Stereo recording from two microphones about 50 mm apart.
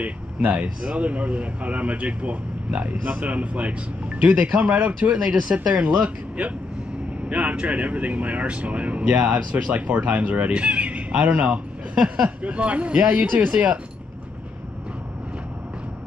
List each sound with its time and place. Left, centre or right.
0.0 s speech: right
5.1 s speech: centre
11.9 s a sound: centre
12.4 s speech: right